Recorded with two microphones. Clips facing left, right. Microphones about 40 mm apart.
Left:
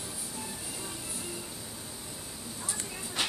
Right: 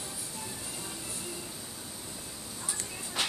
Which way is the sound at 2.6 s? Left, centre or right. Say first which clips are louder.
Left 1 dB; centre.